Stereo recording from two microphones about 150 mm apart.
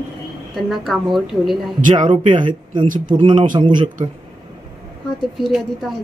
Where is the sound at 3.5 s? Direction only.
30° right (ahead or behind).